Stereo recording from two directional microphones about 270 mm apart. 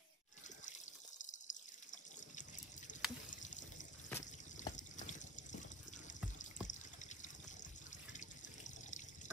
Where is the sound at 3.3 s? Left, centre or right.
Left.